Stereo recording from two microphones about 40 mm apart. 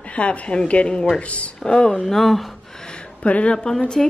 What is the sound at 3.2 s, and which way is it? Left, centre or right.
Speech, left.